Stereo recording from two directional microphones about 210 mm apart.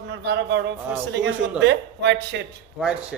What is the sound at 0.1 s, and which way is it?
A man's voice, 55° right (ahead or behind).